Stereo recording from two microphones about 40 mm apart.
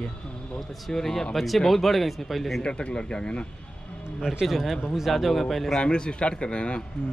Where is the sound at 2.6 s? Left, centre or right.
Left.